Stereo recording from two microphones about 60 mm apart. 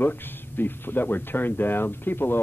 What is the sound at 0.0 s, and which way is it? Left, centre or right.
Speech, left.